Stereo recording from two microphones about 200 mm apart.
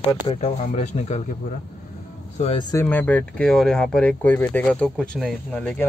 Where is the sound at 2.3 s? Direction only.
30° left (ahead or behind).